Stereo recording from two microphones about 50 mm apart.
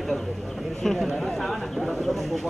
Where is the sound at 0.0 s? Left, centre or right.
Centre.